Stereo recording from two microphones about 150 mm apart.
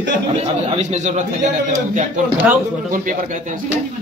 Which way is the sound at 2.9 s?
60° right (ahead or behind).